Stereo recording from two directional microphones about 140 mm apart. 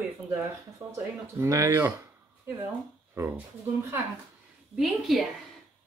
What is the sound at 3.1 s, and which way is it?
Speech, 15° right (ahead or behind).